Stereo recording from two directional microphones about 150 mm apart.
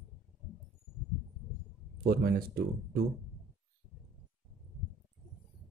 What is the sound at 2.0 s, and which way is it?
Speech, 85° right.